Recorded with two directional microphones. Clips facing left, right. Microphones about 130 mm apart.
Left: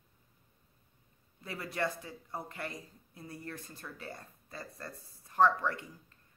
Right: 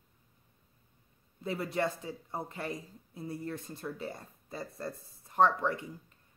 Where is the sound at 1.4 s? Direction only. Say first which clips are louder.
Right 4 dB; 25° right (ahead or behind).